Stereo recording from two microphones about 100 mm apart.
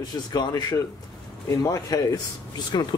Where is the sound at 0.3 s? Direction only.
40° left (ahead or behind).